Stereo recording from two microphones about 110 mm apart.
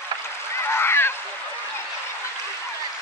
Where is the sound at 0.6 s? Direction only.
20° left (ahead or behind).